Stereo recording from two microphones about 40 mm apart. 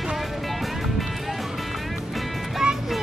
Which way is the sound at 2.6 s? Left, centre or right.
Centre.